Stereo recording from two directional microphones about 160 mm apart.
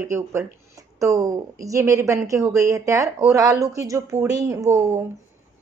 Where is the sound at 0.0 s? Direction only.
15° right (ahead or behind).